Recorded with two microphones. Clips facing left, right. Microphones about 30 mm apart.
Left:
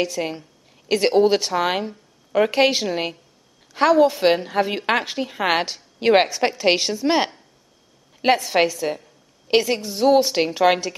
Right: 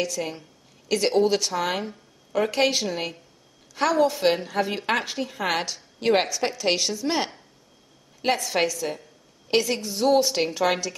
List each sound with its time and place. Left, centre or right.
0.0 s a woman's voice: left